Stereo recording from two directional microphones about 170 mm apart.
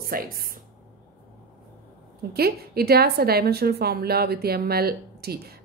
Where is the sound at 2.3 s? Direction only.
65° right (ahead or behind).